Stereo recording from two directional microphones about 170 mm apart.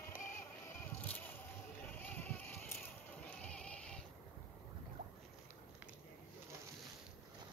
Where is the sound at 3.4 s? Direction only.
5° left (ahead or behind).